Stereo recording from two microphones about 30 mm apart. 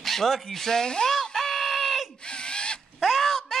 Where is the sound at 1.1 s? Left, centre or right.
Centre.